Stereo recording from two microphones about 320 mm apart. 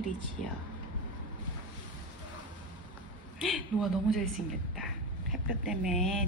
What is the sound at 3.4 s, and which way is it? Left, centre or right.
Speech, centre.